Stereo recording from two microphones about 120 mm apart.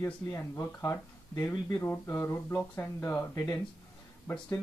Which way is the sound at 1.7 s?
15° left (ahead or behind).